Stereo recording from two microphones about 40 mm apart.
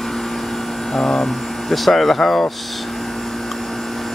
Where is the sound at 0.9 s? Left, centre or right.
Centre.